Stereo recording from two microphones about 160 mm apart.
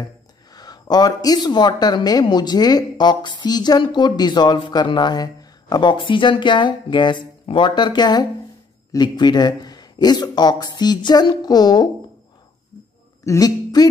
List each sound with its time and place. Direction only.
0.5 s speech: 25° left (ahead or behind)
13.2 s speech: 20° left (ahead or behind)